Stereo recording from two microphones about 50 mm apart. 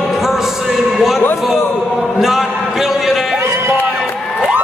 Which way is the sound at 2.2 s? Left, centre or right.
Centre.